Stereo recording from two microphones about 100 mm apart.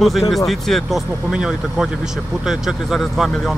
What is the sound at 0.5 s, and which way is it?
Speech, centre (ahead or behind).